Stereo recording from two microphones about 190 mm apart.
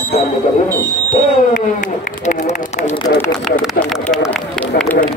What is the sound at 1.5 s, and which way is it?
Speech, 45° left (ahead or behind).